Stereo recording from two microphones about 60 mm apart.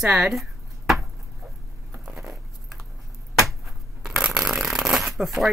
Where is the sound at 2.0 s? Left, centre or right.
Centre.